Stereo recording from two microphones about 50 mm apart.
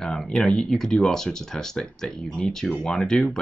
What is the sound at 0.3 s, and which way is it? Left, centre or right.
Speech, centre.